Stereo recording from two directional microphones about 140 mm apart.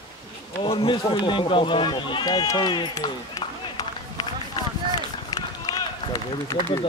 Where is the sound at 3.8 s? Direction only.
25° left (ahead or behind).